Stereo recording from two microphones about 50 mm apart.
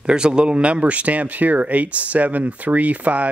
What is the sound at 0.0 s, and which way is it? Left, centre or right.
Speech, centre.